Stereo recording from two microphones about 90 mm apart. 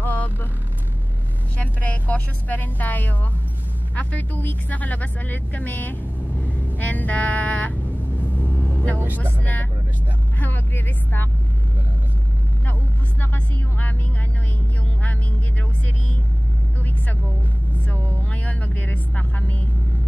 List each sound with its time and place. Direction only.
0.0 s vehicle: 20° left (ahead or behind)
1.6 s a woman's voice: 15° left (ahead or behind)
6.8 s music: 15° left (ahead or behind)
8.4 s vehicle: 20° left (ahead or behind)
9.2 s speech: 20° left (ahead or behind)
13.2 s speech: 20° left (ahead or behind)
18.1 s speech: 15° left (ahead or behind)